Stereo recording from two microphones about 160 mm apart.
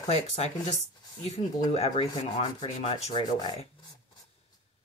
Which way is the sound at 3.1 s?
25° left (ahead or behind).